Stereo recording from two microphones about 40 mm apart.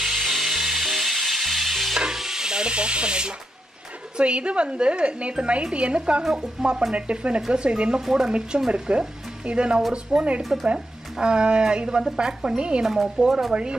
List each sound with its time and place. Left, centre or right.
0.0 s music: centre
2.0 s stir: centre
4.2 s speech: right
6.2 s speech: centre
6.9 s speech: right
8.0 s speech: centre
8.3 s speech: right
12.8 s speech: centre
13.5 s speech: right